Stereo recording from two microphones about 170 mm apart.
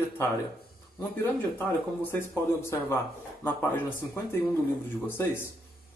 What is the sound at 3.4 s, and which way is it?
A man's voice, 10° left (ahead or behind).